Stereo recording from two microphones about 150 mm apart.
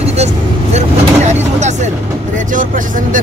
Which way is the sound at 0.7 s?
50° right (ahead or behind).